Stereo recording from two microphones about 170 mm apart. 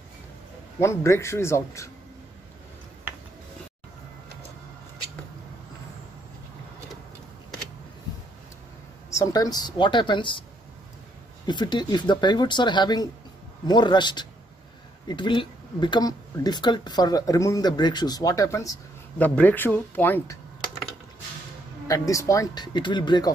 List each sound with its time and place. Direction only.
0.7 s a man's voice: 15° left (ahead or behind)
9.1 s speech: 20° left (ahead or behind)
11.4 s speech: 25° left (ahead or behind)
21.8 s speech: 20° left (ahead or behind)